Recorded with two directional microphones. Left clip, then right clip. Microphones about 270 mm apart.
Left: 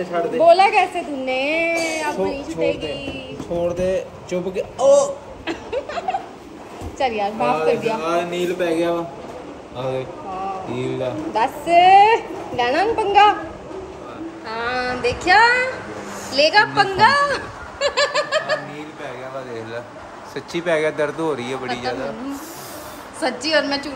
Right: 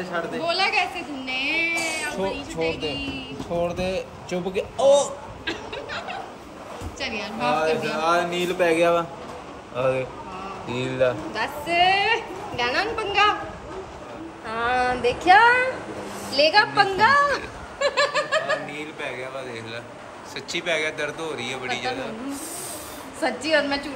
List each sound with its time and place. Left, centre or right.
0.1 s a woman's voice: centre
8.5 s speech: right
10.7 s speech: right
11.3 s a woman's voice: centre
14.5 s a woman's voice: centre
20.3 s speech: left
23.2 s a woman's voice: centre